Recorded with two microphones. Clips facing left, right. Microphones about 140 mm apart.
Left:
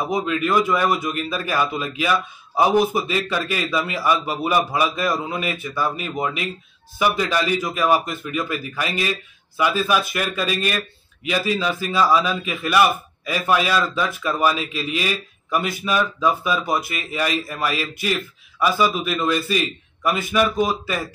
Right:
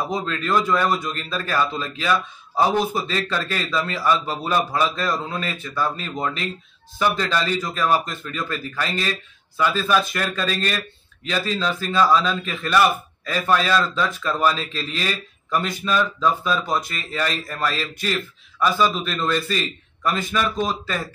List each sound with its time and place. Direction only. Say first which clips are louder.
0.1 s a man's voice: left 4 dB; 10° left (ahead or behind)